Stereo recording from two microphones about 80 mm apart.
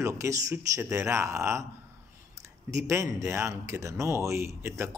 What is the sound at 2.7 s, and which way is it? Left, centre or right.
Speech, right.